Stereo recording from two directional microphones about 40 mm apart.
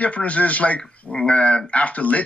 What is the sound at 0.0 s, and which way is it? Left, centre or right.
Speech, left.